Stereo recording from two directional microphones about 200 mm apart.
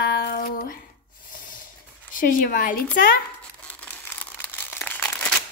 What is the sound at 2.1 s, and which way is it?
Speech, 40° left (ahead or behind).